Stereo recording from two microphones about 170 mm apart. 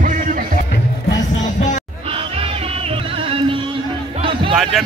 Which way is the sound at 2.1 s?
35° right (ahead or behind).